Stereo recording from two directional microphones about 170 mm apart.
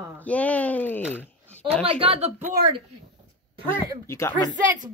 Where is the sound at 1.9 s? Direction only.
35° right (ahead or behind).